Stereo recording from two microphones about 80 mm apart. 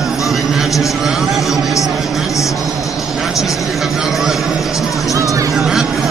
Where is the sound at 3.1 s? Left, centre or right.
Centre.